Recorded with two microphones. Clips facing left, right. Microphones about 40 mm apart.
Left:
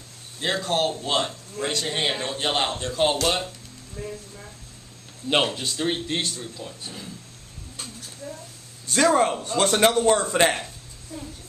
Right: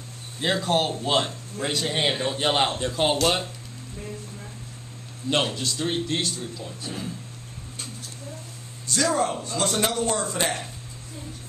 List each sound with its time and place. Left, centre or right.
0.4 s a man's voice: centre
4.0 s speech: centre
5.3 s a man's voice: centre
8.8 s speech: left